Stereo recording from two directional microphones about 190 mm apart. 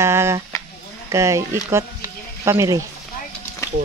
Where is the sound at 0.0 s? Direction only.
15° right (ahead or behind).